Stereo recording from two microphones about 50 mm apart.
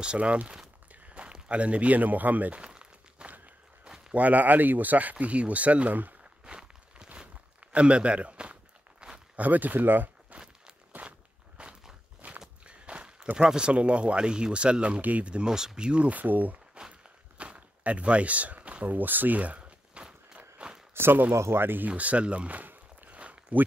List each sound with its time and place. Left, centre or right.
0.0 s speech: right
2.6 s crumpling: centre
4.1 s speech: right
6.4 s walk: centre
7.7 s speech: right
9.0 s a sound: centre
9.4 s speech: right
10.3 s walk: right
13.4 s speech: centre; by 16.5 s right
16.8 s walk: right
17.6 s a sound: right
20.9 s speech: right
21.8 s walk: right